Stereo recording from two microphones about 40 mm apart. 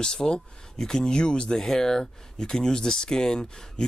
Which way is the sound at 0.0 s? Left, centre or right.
Centre.